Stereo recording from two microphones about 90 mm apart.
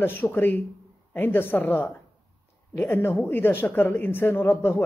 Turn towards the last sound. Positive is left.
turn(degrees=25)  # may be behind; listen again after turning